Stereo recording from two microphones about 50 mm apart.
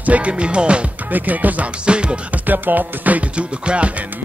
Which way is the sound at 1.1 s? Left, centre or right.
Right.